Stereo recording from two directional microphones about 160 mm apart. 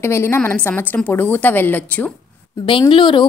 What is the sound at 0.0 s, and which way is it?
A woman's voice, 15° left (ahead or behind).